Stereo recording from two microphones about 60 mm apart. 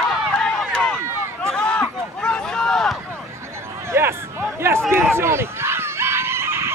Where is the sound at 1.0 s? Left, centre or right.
Right.